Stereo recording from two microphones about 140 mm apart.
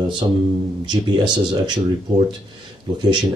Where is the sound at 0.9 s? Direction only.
35° right (ahead or behind).